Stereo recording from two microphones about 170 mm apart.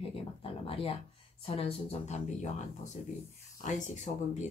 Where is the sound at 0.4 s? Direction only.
35° left (ahead or behind).